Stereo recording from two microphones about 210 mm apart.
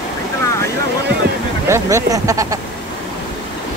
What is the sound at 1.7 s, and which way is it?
Speech, 15° right (ahead or behind).